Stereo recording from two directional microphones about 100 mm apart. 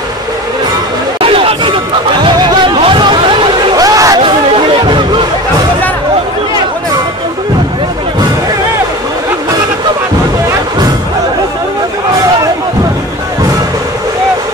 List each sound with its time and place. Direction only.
1.2 s chatter: 65° right (ahead or behind)
2.2 s music: 50° right (ahead or behind)
3.7 s a sound: 35° right (ahead or behind)
4.8 s music: 55° right (ahead or behind)